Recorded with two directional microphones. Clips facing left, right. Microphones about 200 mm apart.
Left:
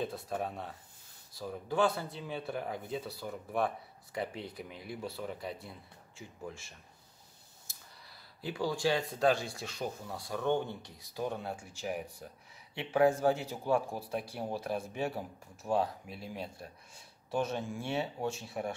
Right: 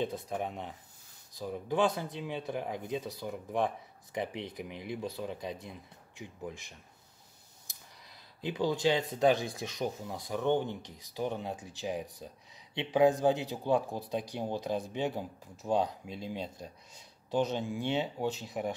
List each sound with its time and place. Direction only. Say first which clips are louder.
0.0 s speech: right 2 dB; 20° right (ahead or behind)